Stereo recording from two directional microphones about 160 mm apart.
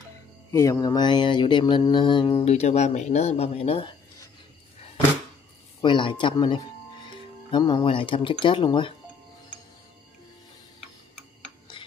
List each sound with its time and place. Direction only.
0.5 s mantra: 20° left (ahead or behind); by 3.9 s 35° left (ahead or behind)
5.8 s speech: 30° left (ahead or behind)
7.5 s mantra: 30° left (ahead or behind)